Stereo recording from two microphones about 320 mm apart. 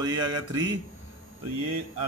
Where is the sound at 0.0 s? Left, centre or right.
Centre.